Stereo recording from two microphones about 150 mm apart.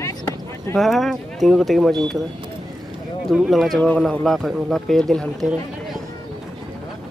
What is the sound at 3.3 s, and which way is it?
Speech, centre (ahead or behind).